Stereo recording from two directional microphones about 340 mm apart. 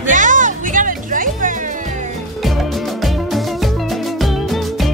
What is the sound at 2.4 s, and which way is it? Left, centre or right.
Music, centre.